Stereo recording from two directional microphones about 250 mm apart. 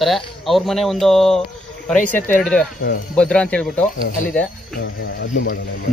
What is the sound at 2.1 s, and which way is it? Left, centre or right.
Speech, left.